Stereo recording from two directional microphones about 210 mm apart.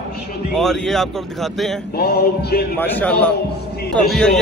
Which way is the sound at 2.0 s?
50° left (ahead or behind).